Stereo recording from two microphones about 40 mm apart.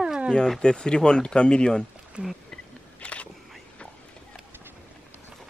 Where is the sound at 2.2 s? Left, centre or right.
Right.